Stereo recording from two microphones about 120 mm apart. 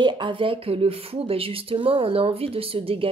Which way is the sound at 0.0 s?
40° right (ahead or behind).